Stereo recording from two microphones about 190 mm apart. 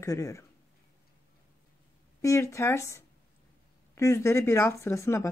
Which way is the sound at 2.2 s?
15° left (ahead or behind).